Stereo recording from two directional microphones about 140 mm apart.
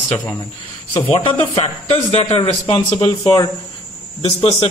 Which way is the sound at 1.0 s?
40° left (ahead or behind).